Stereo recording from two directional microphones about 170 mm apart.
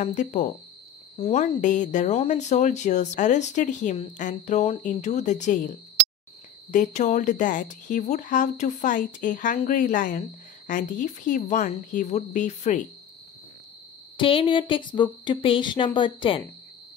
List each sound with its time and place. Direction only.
0.0 s speech: 45° left (ahead or behind)
14.1 s speech: 30° left (ahead or behind)